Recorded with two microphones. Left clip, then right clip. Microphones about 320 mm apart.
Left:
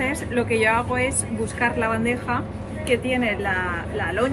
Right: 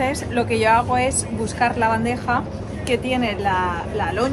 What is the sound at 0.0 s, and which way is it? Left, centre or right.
Speech, centre.